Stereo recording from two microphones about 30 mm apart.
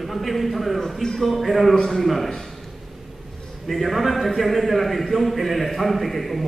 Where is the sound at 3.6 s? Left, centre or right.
Centre.